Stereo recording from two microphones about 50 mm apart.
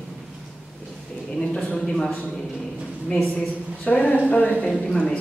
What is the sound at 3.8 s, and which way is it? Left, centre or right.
A woman's voice, left.